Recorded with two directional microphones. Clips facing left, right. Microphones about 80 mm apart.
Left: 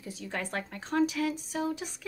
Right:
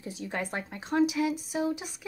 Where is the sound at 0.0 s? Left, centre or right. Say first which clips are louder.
Right 2 dB; right.